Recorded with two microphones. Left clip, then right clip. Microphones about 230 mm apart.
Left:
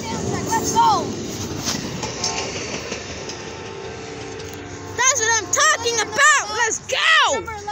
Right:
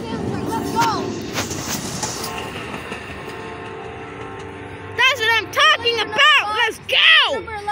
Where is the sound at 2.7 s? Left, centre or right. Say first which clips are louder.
Left 1 dB; right.